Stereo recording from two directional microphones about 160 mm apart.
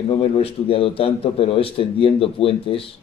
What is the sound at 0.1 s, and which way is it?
A man's voice, 35° left (ahead or behind).